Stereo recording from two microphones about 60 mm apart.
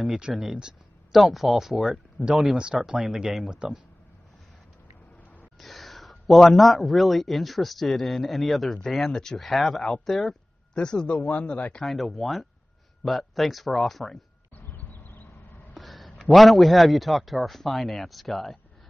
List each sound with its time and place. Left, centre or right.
0.3 s speech: centre
5.6 s a man's voice: centre
11.1 s speech: left
11.8 s speech: centre
14.7 s a sound: left
15.7 s a man's voice: centre